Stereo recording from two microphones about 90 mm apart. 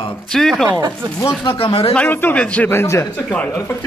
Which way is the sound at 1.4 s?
70° left (ahead or behind).